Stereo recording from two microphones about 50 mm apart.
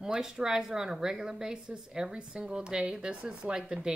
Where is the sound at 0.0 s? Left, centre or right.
Centre.